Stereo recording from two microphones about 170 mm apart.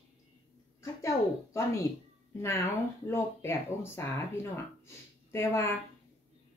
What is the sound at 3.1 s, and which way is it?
A woman's voice, 15° left (ahead or behind).